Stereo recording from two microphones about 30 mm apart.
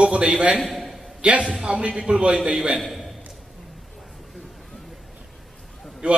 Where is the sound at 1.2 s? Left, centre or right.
Right.